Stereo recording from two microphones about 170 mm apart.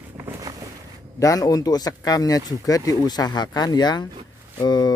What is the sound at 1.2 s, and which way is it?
Speech, 20° left (ahead or behind).